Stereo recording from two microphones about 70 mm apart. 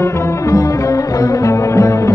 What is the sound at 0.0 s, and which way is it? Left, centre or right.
Music, left.